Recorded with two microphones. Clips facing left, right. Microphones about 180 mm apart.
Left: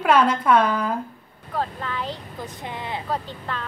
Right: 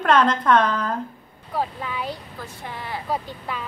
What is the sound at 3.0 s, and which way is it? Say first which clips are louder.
Speech: right 1 dB; 10° right (ahead or behind).